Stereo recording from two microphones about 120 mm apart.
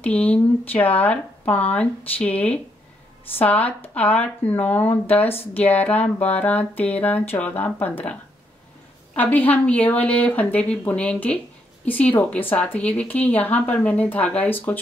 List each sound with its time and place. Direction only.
0.0 s speech: 10° left (ahead or behind)